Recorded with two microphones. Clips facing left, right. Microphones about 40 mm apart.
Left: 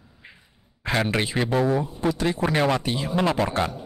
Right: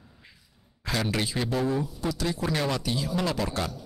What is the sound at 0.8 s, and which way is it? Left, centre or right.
A man's voice, left.